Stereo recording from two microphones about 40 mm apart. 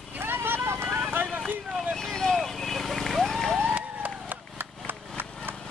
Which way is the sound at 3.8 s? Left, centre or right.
Right.